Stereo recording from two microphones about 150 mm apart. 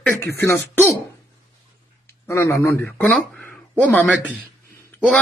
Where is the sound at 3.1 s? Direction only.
10° left (ahead or behind).